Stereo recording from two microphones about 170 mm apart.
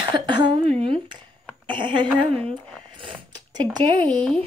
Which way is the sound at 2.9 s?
30° right (ahead or behind).